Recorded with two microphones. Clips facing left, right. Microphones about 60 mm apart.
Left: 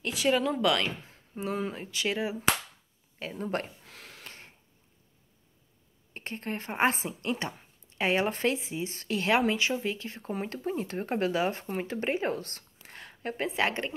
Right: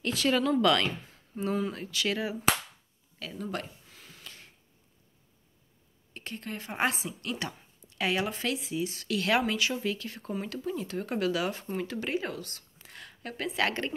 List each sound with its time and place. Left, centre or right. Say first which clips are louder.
0.0 s speech: even; centre
1.3 s speech: right 2 dB; left
3.2 s speech: left 3 dB; left
3.6 s a sound: left 3 dB; left
4.2 s a sound: left 2 dB; left
6.1 s speech: left 3 dB; left
10.4 s speech: left 3 dB; left